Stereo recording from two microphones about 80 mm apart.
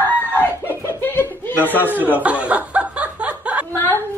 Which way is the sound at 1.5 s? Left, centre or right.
Left.